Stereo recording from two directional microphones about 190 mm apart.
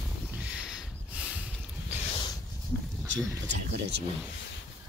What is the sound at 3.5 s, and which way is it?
Speech, 70° right (ahead or behind).